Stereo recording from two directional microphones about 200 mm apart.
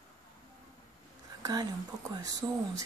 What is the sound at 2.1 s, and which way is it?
Speech, 20° right (ahead or behind).